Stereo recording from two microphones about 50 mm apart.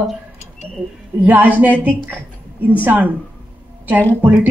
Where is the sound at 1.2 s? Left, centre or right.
Right.